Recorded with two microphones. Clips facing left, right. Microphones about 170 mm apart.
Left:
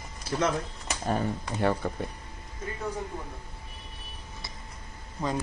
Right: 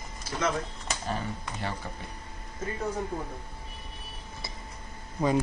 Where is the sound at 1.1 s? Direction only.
45° left (ahead or behind).